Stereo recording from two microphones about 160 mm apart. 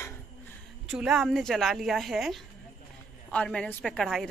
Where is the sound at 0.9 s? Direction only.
5° right (ahead or behind).